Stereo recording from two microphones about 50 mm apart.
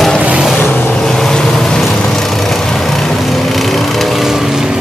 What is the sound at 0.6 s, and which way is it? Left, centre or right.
Vehicle, left.